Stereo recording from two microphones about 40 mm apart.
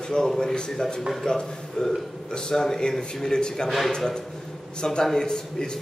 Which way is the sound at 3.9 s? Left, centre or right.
Centre.